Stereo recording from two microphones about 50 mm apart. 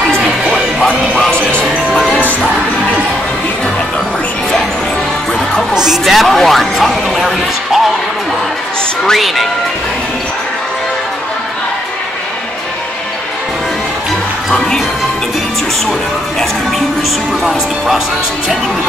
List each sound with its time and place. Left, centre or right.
0.8 s music: centre
5.7 s music: centre
7.2 s a sound: centre
9.0 s speech: centre
17.5 s speech: centre